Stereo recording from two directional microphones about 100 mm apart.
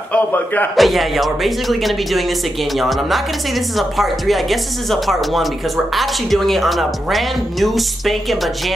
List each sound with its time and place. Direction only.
0.1 s a man's voice: 15° left (ahead or behind)
0.7 s speech: centre (ahead or behind)